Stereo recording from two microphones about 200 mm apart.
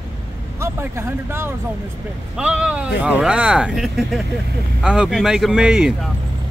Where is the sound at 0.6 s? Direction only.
15° right (ahead or behind).